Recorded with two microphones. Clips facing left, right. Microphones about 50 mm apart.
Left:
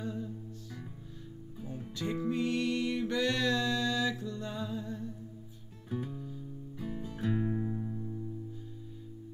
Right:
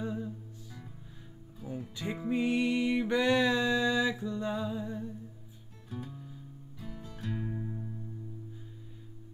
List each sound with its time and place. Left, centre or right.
0.0 s music: centre
2.0 s music: centre
5.9 s music: centre
6.1 s music: centre
6.8 s music: centre